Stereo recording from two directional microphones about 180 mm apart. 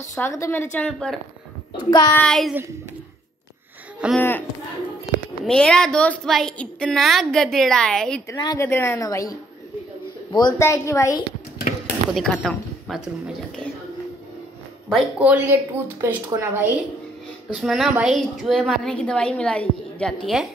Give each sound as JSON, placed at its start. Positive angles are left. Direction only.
{"t": 0.1, "sound": "a woman's voice", "side_deg": 15}
{"t": 1.8, "sound": "child singing", "side_deg": 25}
{"t": 2.1, "sound": "a woman's voice", "side_deg": 0}
{"t": 4.0, "sound": "a woman's voice", "side_deg": -5}
{"t": 5.4, "sound": "a woman's voice", "side_deg": 5}
{"t": 8.3, "sound": "a woman's voice", "side_deg": 20}
{"t": 11.7, "sound": "a sound", "side_deg": 50}
{"t": 12.1, "sound": "a woman's voice", "side_deg": 5}
{"t": 14.9, "sound": "speech", "side_deg": -5}
{"t": 17.6, "sound": "a woman's voice", "side_deg": 0}